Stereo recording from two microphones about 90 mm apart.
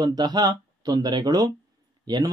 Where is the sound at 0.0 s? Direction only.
45° right (ahead or behind).